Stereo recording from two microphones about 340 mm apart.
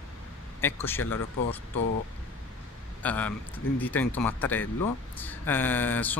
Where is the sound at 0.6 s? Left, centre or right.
Centre.